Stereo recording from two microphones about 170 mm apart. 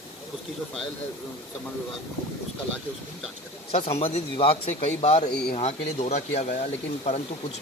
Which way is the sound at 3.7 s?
35° left (ahead or behind).